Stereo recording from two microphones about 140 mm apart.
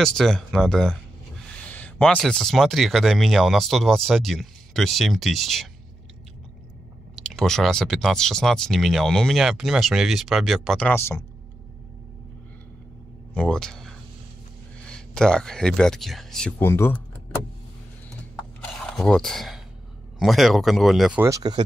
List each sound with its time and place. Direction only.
0.0 s speech: 5° left (ahead or behind)
1.7 s a sound: 10° left (ahead or behind)
2.1 s speech: 5° left (ahead or behind)
7.2 s speech: 5° left (ahead or behind)
13.3 s speech: 5° left (ahead or behind)
18.6 s a sound: 5° left (ahead or behind)
20.2 s speech: centre (ahead or behind)
21.2 s speech: 25° right (ahead or behind)